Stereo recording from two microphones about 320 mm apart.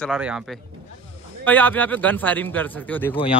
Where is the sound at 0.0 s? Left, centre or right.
Centre.